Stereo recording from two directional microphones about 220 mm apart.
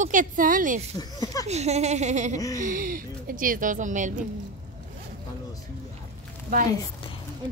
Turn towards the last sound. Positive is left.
turn(degrees=25)  # may be behind; listen again after turning